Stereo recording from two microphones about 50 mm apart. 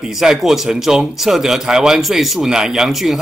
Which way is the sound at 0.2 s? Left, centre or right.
Centre.